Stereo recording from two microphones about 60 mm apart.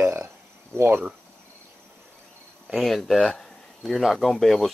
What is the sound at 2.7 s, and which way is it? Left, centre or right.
Speech, centre.